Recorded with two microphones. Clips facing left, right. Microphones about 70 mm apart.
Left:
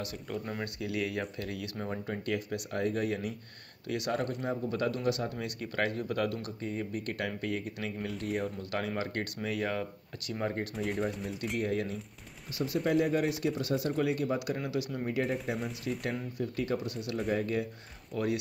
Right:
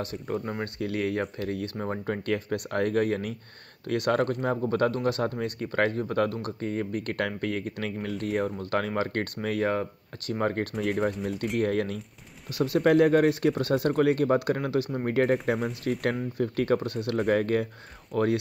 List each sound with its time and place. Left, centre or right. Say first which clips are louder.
0.0 s speech: right 6 dB; right
2.0 s speech: right 6 dB; right
15.0 s speech: right 10 dB; right
18.1 s speech: right 7 dB; right